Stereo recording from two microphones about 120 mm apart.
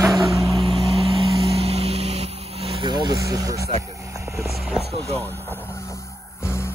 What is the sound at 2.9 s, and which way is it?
Speech, 35° right (ahead or behind).